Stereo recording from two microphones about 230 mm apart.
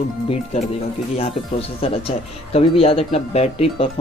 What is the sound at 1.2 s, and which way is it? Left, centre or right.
Speech, left.